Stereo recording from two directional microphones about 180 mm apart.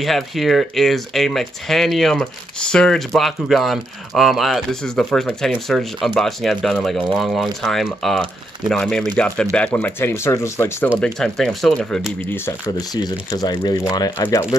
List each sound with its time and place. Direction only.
0.0 s speech: centre (ahead or behind)
11.1 s speech: centre (ahead or behind)
12.2 s speech: 15° left (ahead or behind)